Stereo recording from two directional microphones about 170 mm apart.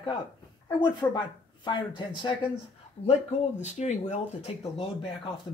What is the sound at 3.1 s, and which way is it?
Speech, 45° left (ahead or behind).